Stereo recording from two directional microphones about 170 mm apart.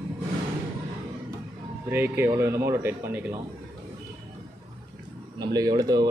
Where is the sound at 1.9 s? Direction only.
15° right (ahead or behind).